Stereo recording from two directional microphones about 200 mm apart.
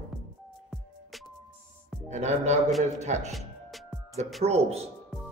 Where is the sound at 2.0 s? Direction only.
35° right (ahead or behind).